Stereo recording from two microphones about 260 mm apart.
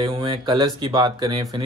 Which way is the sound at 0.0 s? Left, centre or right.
Centre.